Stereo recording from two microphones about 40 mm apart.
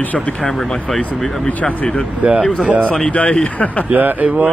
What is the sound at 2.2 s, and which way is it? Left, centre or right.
Speech, right.